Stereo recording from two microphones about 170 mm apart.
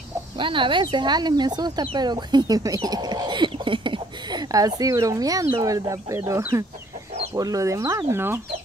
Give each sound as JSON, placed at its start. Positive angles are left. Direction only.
{"t": 0.4, "sound": "speech", "side_deg": -30}